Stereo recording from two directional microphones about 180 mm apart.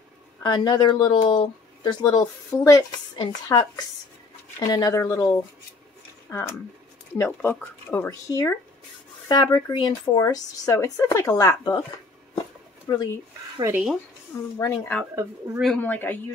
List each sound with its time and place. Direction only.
0.4 s speech: 25° left (ahead or behind)
12.8 s speech: 20° left (ahead or behind)
13.6 s speech: 15° right (ahead or behind)
14.6 s speech: 5° left (ahead or behind)